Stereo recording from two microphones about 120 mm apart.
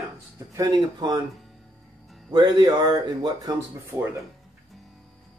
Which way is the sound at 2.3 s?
40° right (ahead or behind).